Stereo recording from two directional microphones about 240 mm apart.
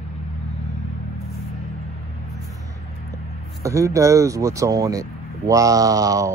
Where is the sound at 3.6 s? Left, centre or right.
Centre.